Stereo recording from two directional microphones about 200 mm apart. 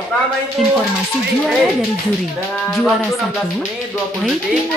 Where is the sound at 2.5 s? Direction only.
5° left (ahead or behind).